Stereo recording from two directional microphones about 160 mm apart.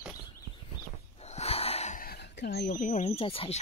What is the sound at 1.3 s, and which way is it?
Gasp, 40° left (ahead or behind).